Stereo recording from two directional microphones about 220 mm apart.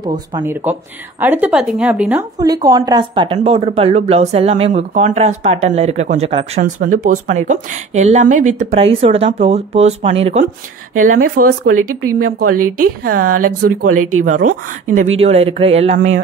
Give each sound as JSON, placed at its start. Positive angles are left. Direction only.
{"t": 0.0, "sound": "speech", "side_deg": -20}
{"t": 0.4, "sound": "speech", "side_deg": -10}
{"t": 6.6, "sound": "a woman's voice", "side_deg": -40}
{"t": 11.2, "sound": "a woman's voice", "side_deg": -40}
{"t": 11.7, "sound": "speech", "side_deg": -75}
{"t": 13.0, "sound": "a woman's voice", "side_deg": -40}
{"t": 13.8, "sound": "speech", "side_deg": -75}
{"t": 14.2, "sound": "a woman's voice", "side_deg": -35}